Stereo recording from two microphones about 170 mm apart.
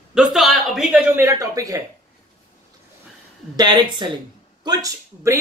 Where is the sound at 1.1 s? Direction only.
20° right (ahead or behind).